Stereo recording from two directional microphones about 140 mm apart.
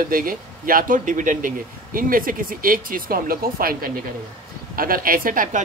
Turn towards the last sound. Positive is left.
turn(degrees=-80)